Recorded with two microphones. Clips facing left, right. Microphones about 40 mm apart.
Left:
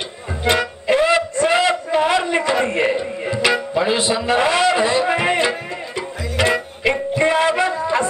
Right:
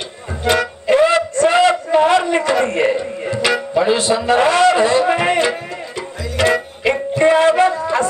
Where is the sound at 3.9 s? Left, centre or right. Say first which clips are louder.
Right 3 dB; centre.